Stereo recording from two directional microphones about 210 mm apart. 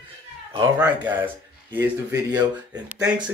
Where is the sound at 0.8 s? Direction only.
10° right (ahead or behind).